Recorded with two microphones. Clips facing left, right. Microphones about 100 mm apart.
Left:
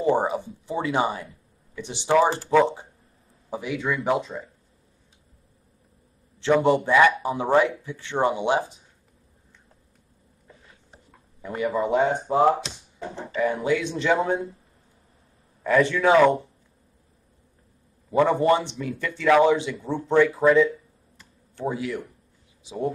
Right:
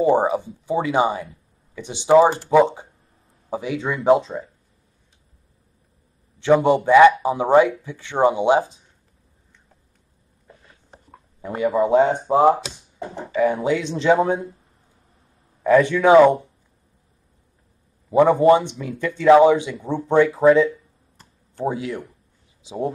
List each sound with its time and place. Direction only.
0.0 s speech: 20° right (ahead or behind)
6.4 s speech: 20° right (ahead or behind)
11.4 s speech: 30° right (ahead or behind)
13.4 s speech: 25° right (ahead or behind)
15.6 s speech: 20° right (ahead or behind)
18.1 s speech: 15° right (ahead or behind)
21.2 s a sound: 40° right (ahead or behind)
21.7 s speech: 25° right (ahead or behind)